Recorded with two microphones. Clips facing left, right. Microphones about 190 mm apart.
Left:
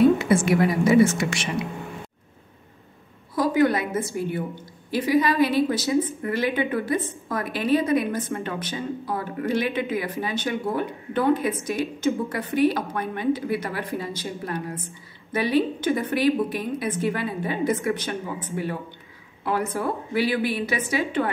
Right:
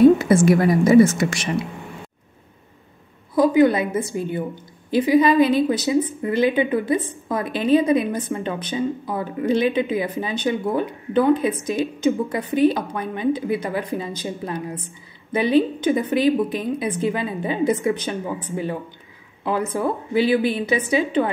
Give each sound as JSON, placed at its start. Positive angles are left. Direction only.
{"t": 0.2, "sound": "a woman's voice", "side_deg": -40}
{"t": 3.3, "sound": "a woman's voice", "side_deg": -20}
{"t": 19.4, "sound": "a woman's voice", "side_deg": -20}